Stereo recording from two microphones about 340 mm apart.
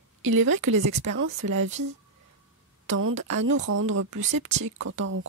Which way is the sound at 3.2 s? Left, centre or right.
Right.